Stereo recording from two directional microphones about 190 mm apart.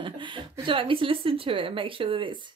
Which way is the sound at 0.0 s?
25° right (ahead or behind).